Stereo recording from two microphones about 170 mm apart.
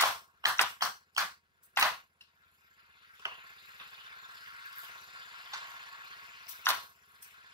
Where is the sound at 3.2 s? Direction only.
25° right (ahead or behind).